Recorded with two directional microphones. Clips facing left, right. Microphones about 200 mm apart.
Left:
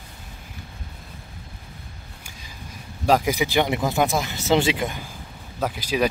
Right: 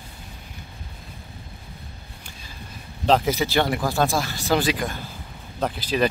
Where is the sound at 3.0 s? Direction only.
10° left (ahead or behind).